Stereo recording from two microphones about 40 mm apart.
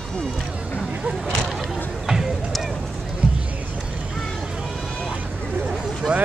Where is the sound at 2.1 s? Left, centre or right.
Centre.